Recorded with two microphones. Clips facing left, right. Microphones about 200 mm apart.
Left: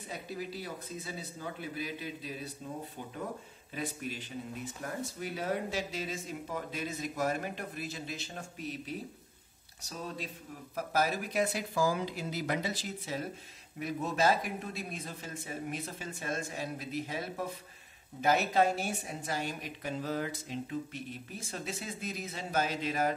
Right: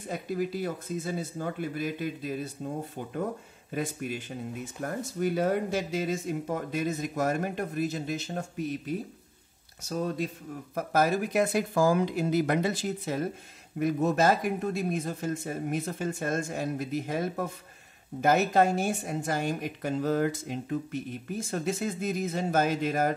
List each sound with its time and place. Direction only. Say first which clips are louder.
0.1 s a woman's voice: right 9 dB; 50° right (ahead or behind)
3.7 s a woman's voice: right 6 dB; 50° right (ahead or behind)